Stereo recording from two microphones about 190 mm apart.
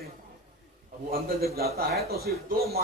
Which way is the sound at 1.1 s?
55° right (ahead or behind).